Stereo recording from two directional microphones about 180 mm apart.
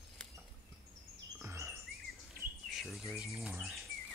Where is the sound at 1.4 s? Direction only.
15° right (ahead or behind).